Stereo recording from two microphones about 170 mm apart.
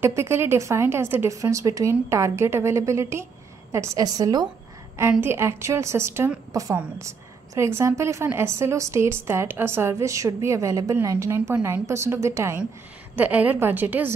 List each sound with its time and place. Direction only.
0.0 s a woman's voice: 15° right (ahead or behind)
5.1 s a woman's voice: 15° right (ahead or behind)